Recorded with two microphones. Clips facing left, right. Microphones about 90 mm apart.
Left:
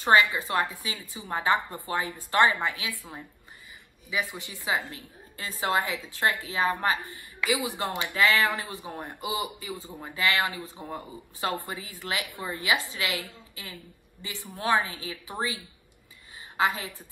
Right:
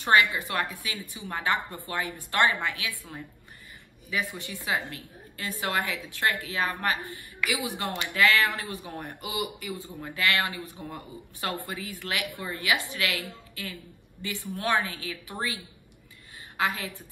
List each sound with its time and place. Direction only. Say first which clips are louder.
0.0 s a woman's voice: left 1 dB; 20° left (ahead or behind)